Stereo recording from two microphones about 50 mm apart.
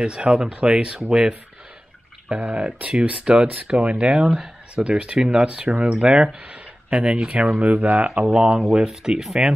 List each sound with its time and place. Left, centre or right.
0.0 s speech: right
2.2 s speech: right
5.7 s speech: right
5.9 s speech: centre